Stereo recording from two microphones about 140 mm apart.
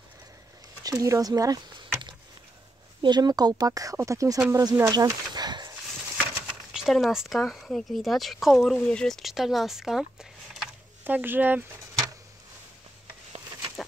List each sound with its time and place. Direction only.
0.8 s speech: 25° right (ahead or behind)
6.1 s speech: 5° right (ahead or behind)
10.6 s a sound: 10° right (ahead or behind)